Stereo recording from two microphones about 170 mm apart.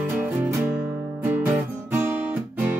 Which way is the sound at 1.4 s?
10° right (ahead or behind).